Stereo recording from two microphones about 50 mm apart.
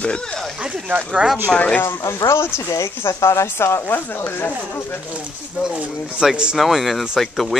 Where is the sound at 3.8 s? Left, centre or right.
Left.